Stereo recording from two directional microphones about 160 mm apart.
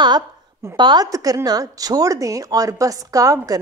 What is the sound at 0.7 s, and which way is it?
A woman's voice, 25° right (ahead or behind).